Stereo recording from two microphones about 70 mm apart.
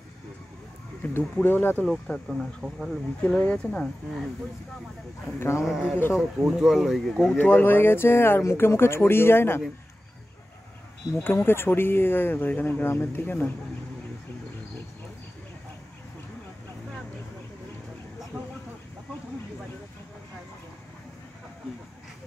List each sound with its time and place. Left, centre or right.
1.0 s speech: left
2.2 s speech: centre
3.2 s speech: centre
5.6 s speech: centre
7.2 s speech: left
11.1 s speech: left
18.3 s vehicle: right